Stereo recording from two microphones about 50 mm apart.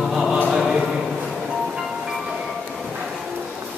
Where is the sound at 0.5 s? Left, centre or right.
Centre.